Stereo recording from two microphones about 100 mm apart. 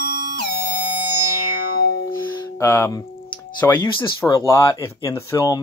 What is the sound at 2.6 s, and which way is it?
Speech, 25° left (ahead or behind).